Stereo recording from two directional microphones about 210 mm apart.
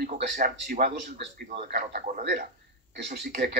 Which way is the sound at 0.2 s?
50° right (ahead or behind).